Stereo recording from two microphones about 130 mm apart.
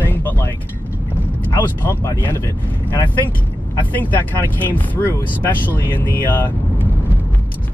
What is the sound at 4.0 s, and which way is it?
Speech, 15° left (ahead or behind).